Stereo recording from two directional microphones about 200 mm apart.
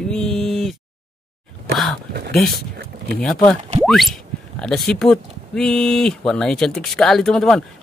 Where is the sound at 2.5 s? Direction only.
55° right (ahead or behind).